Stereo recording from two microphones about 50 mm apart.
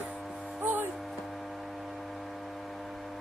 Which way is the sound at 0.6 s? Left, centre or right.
Right.